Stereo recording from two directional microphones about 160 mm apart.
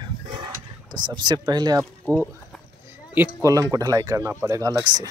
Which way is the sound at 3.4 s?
20° right (ahead or behind).